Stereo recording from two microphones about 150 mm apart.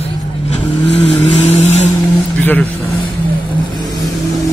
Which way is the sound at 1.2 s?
10° left (ahead or behind).